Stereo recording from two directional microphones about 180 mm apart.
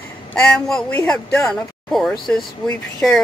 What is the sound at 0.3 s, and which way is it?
A man's voice, 5° left (ahead or behind).